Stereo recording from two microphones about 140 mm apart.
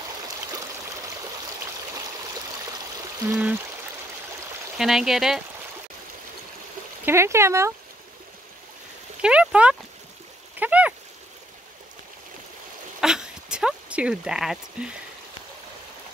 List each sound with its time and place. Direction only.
3.3 s speech: 10° right (ahead or behind)
4.7 s speech: 5° right (ahead or behind)
7.1 s speech: 20° right (ahead or behind)
9.2 s speech: 5° right (ahead or behind)
10.6 s a sound: 10° right (ahead or behind)
13.0 s a sound: 5° right (ahead or behind)